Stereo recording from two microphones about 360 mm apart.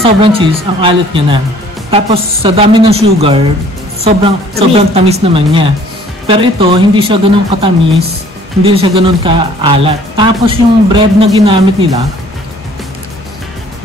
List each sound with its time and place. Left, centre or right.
0.0 s speech: centre